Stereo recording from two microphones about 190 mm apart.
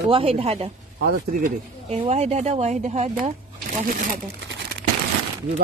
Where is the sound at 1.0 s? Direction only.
45° right (ahead or behind).